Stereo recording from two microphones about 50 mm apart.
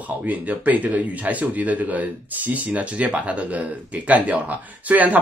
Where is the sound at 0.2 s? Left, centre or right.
Right.